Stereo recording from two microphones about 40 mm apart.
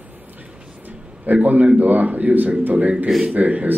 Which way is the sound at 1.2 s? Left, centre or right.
Right.